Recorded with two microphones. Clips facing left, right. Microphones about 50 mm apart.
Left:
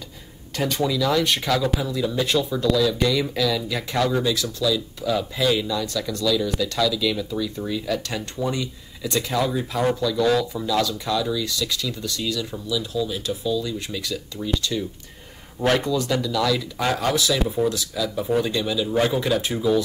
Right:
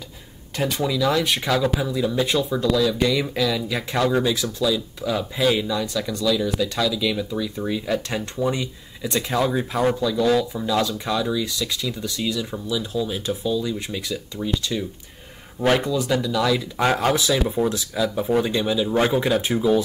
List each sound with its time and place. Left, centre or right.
0.6 s speech: centre
4.1 s speech: right